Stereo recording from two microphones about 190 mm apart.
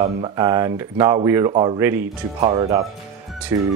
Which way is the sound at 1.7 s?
10° right (ahead or behind).